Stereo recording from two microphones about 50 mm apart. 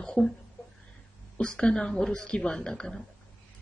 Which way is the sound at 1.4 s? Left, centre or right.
Centre.